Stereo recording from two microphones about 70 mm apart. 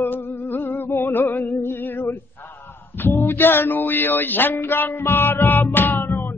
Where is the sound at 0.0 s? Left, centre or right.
Left.